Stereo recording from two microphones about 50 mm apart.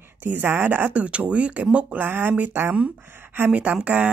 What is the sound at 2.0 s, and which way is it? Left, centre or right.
A woman's voice, right.